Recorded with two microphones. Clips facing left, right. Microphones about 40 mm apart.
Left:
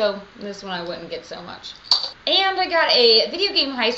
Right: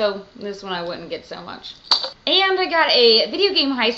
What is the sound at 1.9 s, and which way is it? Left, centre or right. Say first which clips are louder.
Child singing: right 2 dB; right.